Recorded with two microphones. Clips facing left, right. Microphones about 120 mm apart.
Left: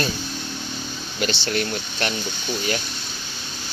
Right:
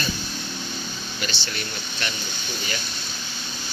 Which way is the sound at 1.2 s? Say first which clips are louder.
Left 10 dB; 70° left (ahead or behind).